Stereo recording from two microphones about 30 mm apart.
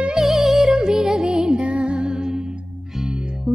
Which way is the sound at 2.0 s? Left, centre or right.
Centre.